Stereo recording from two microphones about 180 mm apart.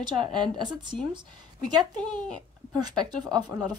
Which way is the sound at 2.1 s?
5° left (ahead or behind).